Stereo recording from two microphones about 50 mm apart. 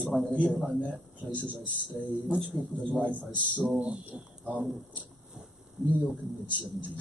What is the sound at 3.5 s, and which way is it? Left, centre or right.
Speech, right.